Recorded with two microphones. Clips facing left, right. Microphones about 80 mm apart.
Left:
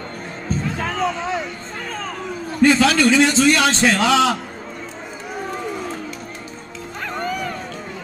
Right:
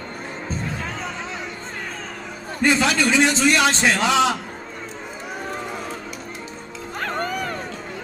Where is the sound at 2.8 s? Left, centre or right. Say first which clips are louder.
Left 4 dB; centre.